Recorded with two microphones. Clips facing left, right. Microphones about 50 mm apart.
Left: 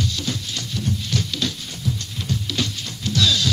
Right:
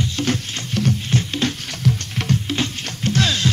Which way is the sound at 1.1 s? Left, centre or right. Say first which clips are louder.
Right 4 dB; right.